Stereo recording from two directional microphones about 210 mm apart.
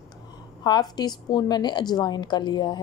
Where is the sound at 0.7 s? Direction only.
20° left (ahead or behind).